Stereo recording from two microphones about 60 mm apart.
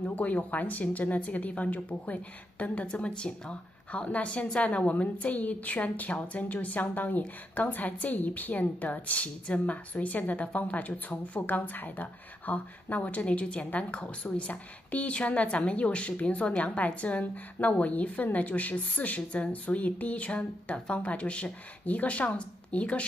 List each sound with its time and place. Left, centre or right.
0.0 s a woman's voice: left